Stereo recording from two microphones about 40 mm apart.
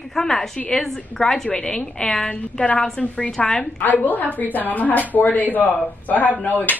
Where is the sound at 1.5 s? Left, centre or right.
Left.